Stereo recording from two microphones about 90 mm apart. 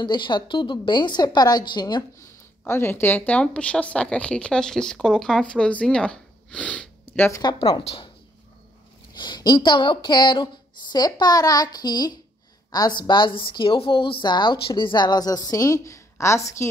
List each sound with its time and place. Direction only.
0.0 s a woman's voice: 60° left (ahead or behind)
2.6 s a woman's voice: 25° left (ahead or behind)
7.4 s speech: 50° left (ahead or behind)
9.1 s speech: 60° left (ahead or behind); by 16.6 s 35° left (ahead or behind)